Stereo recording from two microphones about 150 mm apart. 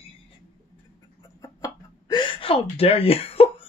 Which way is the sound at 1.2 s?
20° left (ahead or behind).